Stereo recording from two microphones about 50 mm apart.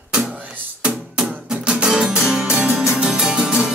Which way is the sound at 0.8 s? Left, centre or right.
Right.